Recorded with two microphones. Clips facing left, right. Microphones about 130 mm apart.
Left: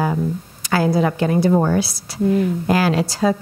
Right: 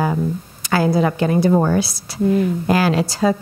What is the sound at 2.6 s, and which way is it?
Speech, 15° right (ahead or behind).